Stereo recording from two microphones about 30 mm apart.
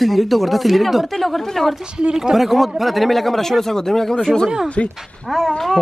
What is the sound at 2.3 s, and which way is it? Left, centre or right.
A man's voice, centre.